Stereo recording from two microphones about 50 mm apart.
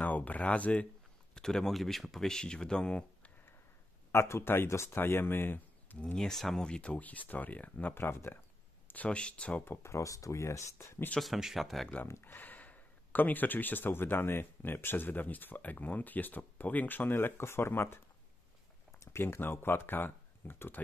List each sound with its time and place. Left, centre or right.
0.0 s speech: left
1.3 s speech: centre
2.2 s speech: centre
4.1 s speech: left
4.9 s speech: left
6.1 s speech: centre
6.7 s speech: left
7.9 s speech: left
8.8 s a sound: left
9.1 s speech: left
9.8 s speech: left
11.3 s speech: centre
12.2 s speech: left
19.1 s speech: left